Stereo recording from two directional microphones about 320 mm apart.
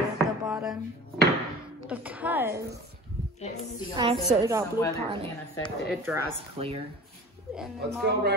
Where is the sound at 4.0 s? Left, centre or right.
Centre.